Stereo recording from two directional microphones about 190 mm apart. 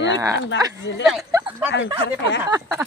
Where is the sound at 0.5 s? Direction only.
70° left (ahead or behind).